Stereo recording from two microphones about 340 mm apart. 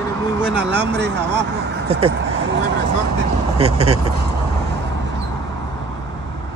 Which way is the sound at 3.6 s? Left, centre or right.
Centre.